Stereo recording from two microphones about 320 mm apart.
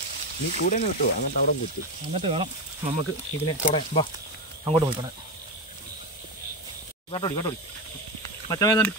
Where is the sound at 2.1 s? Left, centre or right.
Centre.